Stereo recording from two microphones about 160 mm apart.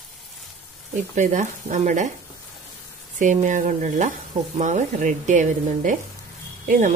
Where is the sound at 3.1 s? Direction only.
50° right (ahead or behind).